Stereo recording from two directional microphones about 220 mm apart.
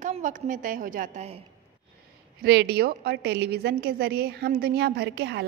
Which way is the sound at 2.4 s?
45° right (ahead or behind).